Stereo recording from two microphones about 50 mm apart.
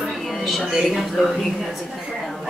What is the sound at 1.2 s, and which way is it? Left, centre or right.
Speech, centre.